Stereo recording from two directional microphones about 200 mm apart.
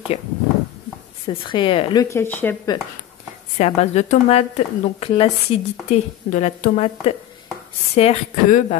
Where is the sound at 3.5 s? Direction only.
35° left (ahead or behind).